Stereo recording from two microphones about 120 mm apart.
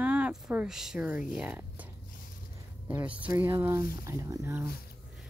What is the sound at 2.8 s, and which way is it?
Speech, 10° right (ahead or behind).